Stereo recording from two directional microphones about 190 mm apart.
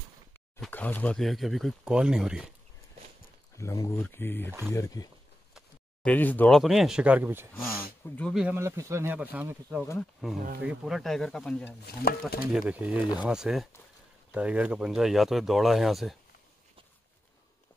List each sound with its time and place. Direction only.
0.7 s speech: 10° left (ahead or behind)
3.5 s speech: 15° left (ahead or behind)
4.5 s speech: 10° right (ahead or behind)
4.7 s speech: 20° left (ahead or behind); by 7.4 s 10° right (ahead or behind)
7.5 s speech: 15° left (ahead or behind)
8.4 s speech: 10° right (ahead or behind)
11.8 s speech: 55° left (ahead or behind)
12.5 s speech: 5° right (ahead or behind)